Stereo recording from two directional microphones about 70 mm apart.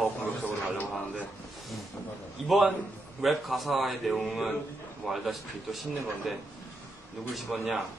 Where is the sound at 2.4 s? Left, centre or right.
Centre.